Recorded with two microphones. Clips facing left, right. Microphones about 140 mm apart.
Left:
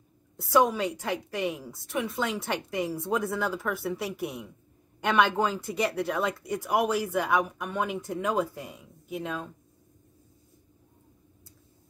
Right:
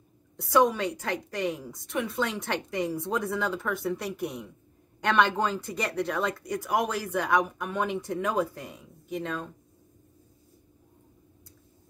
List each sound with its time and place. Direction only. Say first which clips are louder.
0.4 s a woman's voice: even; centre (ahead or behind)